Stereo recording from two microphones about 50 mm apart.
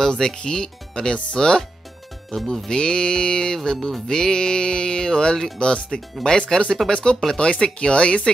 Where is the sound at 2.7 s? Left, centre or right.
Centre.